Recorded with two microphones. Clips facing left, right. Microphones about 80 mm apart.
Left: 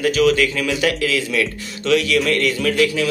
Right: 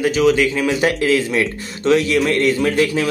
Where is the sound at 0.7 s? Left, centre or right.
Right.